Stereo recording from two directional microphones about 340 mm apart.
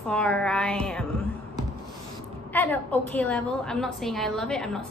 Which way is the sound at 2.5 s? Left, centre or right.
Centre.